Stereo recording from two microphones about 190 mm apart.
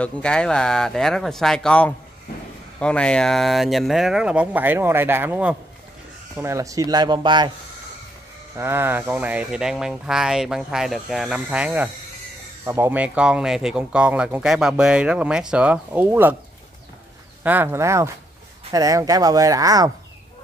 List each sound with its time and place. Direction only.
0.0 s speech: 5° left (ahead or behind); by 7.5 s 25° right (ahead or behind)
8.5 s speech: 15° right (ahead or behind)
17.4 s speech: 10° right (ahead or behind)